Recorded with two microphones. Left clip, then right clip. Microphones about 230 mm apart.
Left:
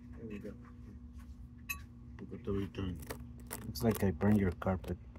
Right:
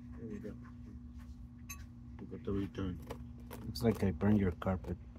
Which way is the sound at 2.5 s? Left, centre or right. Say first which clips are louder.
Even; left.